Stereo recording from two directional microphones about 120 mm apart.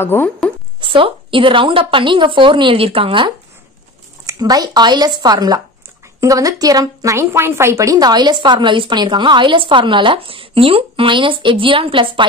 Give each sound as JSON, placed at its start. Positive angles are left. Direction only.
{"t": 0.0, "sound": "speech", "side_deg": 20}
{"t": 0.7, "sound": "a woman's voice", "side_deg": -45}
{"t": 4.3, "sound": "a woman's voice", "side_deg": -30}